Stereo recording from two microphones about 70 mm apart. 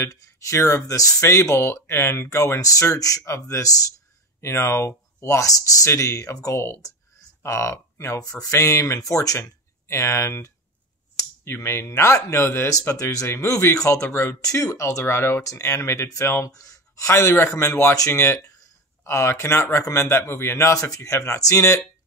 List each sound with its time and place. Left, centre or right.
0.0 s speech: left
0.8 s speech: left
1.2 s speech: left
4.4 s speech: left
13.0 s speech: left
14.4 s speech: left
16.4 s speech: left